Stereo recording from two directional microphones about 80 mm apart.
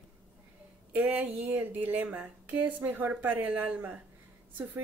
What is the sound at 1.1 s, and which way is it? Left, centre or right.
Speech, right.